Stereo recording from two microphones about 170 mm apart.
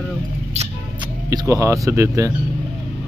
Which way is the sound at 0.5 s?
40° right (ahead or behind).